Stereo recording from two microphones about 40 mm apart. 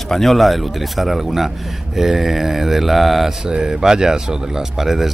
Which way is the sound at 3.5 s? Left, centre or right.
Centre.